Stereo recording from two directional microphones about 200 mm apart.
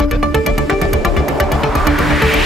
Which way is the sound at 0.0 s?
Centre (ahead or behind).